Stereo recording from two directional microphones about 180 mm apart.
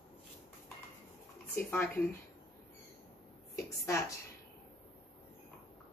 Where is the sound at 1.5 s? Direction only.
10° left (ahead or behind).